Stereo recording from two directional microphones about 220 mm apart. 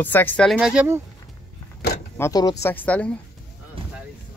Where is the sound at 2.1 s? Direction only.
15° left (ahead or behind).